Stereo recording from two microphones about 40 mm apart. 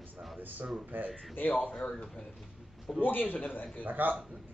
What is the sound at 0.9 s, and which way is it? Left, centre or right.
Speech, right.